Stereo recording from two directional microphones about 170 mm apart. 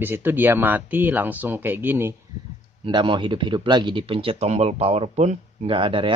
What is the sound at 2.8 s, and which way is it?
Speech, 30° right (ahead or behind).